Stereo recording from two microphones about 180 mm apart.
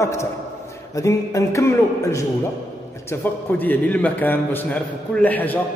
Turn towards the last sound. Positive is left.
turn(degrees=10)  # may be behind; listen again after turning